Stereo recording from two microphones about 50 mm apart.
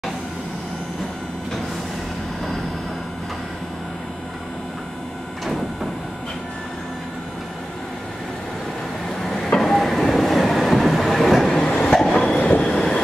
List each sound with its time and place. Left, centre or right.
9.2 s train: centre
11.5 s train: centre
12.3 s train: left